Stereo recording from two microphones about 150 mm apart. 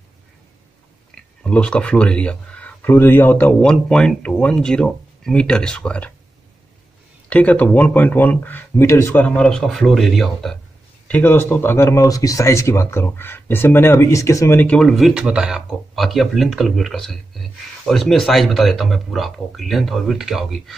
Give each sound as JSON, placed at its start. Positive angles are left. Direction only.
{"t": 1.1, "sound": "speech", "side_deg": 5}
{"t": 7.2, "sound": "speech", "side_deg": 10}
{"t": 11.1, "sound": "speech", "side_deg": 10}